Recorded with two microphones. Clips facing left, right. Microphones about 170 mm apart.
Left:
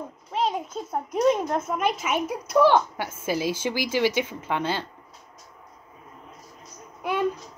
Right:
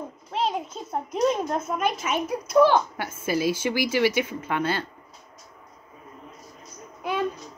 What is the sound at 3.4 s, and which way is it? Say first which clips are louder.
Speech: right 2 dB; 15° left (ahead or behind).